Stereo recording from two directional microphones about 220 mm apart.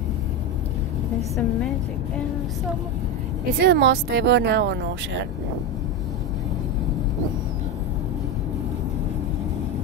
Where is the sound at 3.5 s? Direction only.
50° right (ahead or behind).